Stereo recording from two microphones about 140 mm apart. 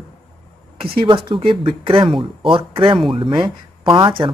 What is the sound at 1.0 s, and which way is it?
Speech, 40° right (ahead or behind).